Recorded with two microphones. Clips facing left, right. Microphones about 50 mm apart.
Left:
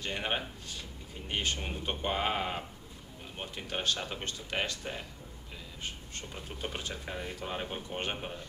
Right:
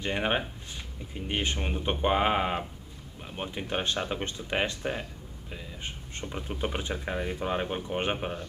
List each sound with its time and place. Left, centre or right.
0.0 s speech: right